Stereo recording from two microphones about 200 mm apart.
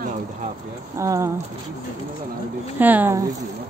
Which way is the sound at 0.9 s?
15° right (ahead or behind).